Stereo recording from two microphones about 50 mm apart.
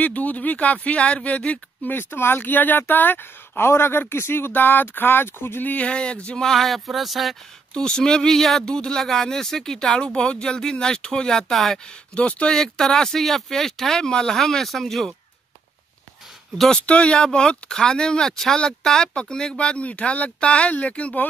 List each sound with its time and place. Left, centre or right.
0.0 s speech: left
2.0 s speech: left
5.9 s speech: left
6.4 s speech: centre
7.7 s speech: centre
12.2 s speech: left
12.5 s speech: centre
16.5 s speech: centre
16.8 s speech: left